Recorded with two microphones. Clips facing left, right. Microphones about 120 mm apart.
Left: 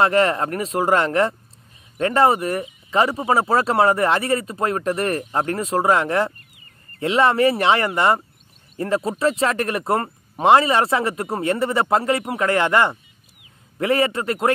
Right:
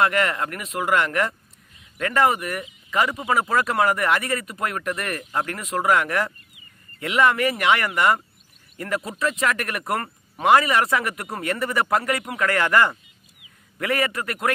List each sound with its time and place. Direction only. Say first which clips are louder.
0.0 s speech: left 4 dB; 30° left (ahead or behind)